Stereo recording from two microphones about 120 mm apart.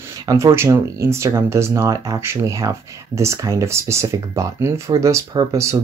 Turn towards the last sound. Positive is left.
turn(degrees=-25)  # may be behind; listen again after turning